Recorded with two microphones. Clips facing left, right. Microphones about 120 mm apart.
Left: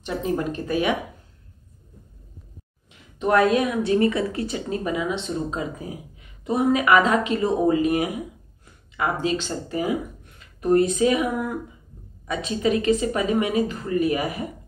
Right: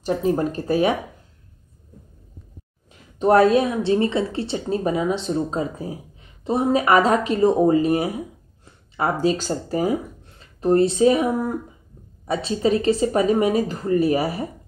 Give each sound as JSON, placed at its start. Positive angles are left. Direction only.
{"t": 0.0, "sound": "a woman's voice", "side_deg": -35}
{"t": 2.9, "sound": "a woman's voice", "side_deg": -35}